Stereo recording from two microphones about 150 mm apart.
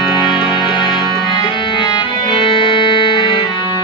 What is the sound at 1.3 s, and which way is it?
Music, 30° left (ahead or behind).